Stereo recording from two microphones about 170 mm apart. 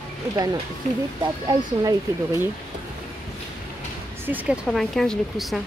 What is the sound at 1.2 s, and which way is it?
Speech, 20° right (ahead or behind).